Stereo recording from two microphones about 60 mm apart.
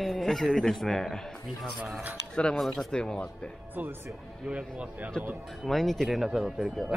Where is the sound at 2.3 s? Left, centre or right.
Centre.